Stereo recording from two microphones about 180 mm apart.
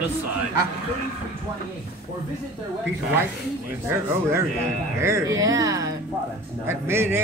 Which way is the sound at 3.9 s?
15° right (ahead or behind).